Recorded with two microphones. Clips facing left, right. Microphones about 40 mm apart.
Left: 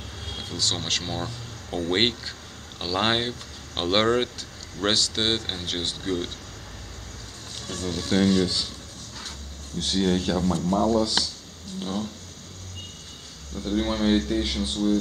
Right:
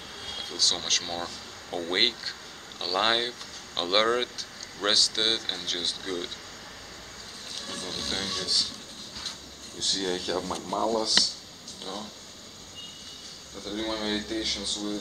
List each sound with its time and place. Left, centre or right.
0.2 s speech: centre
7.7 s speech: centre
8.1 s speech: centre
9.8 s speech: centre
10.6 s speech: centre
11.8 s speech: centre
13.6 s speech: centre